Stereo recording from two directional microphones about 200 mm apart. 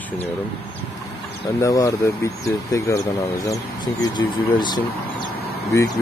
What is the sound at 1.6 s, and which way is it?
Speech, 15° left (ahead or behind).